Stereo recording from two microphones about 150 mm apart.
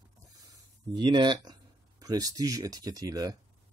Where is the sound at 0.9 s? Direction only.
30° right (ahead or behind).